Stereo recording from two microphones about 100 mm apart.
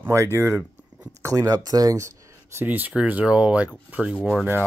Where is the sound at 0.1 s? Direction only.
30° right (ahead or behind).